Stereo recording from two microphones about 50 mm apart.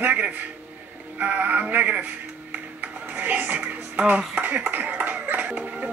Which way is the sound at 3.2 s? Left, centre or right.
Right.